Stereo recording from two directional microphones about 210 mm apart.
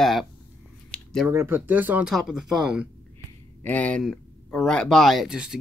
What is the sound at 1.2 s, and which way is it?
Speech, 10° right (ahead or behind).